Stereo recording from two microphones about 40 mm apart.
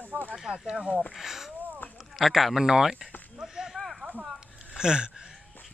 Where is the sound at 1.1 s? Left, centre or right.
Centre.